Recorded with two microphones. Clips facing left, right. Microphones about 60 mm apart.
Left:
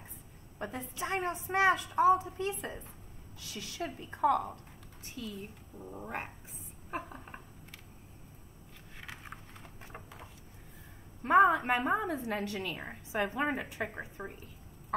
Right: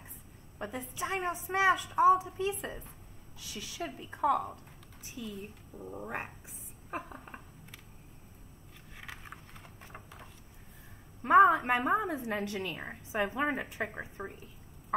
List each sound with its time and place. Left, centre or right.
0.6 s a woman's voice: centre
9.0 s vehicle: centre
11.5 s a woman's voice: centre
11.8 s a woman's voice: centre